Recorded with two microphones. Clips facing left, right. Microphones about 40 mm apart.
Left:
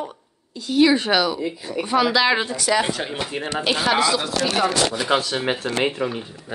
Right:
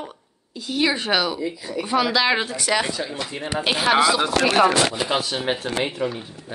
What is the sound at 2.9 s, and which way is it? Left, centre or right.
Speech, left.